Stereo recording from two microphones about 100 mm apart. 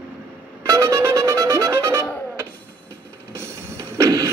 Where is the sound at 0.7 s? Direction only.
30° right (ahead or behind).